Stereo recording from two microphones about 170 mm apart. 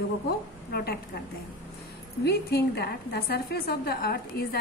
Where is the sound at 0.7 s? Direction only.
65° left (ahead or behind).